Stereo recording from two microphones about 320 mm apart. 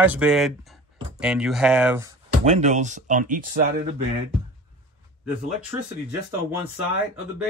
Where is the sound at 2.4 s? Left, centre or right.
Right.